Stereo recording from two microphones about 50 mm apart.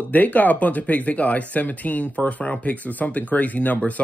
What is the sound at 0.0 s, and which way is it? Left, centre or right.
Speech, left.